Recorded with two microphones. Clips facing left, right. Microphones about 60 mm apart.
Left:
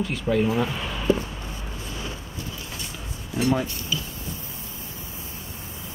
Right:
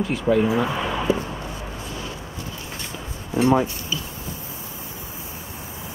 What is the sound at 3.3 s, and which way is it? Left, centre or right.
Speech, right.